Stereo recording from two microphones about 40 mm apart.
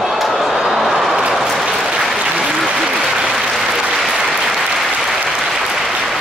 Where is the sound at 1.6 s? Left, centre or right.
Centre.